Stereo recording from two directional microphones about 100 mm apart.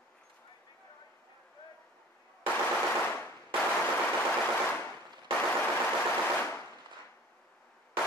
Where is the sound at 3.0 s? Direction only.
15° left (ahead or behind).